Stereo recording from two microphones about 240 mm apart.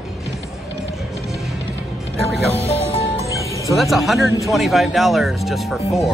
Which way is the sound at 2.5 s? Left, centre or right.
Left.